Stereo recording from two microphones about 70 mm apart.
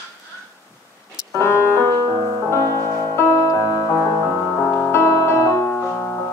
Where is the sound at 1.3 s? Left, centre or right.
Left.